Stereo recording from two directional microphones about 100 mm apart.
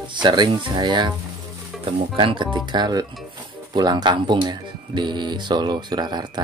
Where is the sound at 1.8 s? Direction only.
60° right (ahead or behind).